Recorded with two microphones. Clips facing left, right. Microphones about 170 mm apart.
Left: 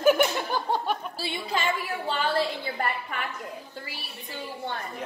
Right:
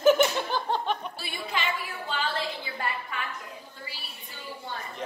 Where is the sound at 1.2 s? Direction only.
35° left (ahead or behind).